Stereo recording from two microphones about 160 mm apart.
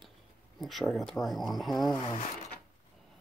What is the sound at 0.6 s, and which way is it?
Speech, centre (ahead or behind).